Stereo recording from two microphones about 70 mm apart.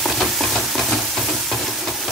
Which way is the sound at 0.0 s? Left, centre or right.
Centre.